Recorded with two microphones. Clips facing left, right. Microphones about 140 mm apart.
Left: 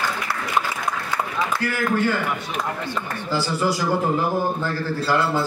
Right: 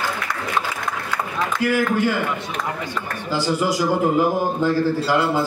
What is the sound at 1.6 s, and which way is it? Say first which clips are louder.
Speech: right 5 dB; 15° right (ahead or behind).